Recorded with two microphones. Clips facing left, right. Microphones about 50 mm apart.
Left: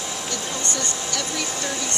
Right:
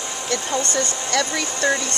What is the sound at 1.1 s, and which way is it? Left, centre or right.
Speech, right.